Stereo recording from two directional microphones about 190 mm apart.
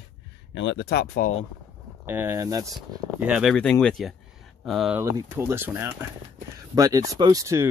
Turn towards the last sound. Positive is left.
turn(degrees=-15)  # may be behind; listen again after turning